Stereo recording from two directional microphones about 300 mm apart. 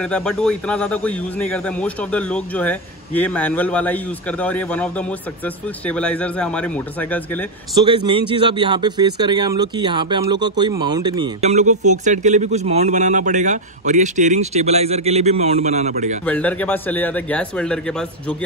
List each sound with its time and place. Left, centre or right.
0.0 s speech: centre
7.8 s speech: centre
16.3 s speech: centre